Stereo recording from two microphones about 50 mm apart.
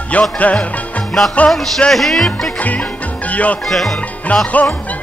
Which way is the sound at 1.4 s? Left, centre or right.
Left.